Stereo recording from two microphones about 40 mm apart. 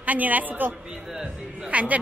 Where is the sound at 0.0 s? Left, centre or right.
Right.